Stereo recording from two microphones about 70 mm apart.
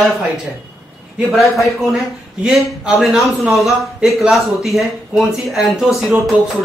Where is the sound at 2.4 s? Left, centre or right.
Centre.